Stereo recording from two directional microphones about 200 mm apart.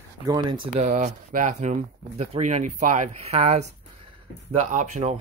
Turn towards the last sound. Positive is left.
turn(degrees=-35)  # may be behind; listen again after turning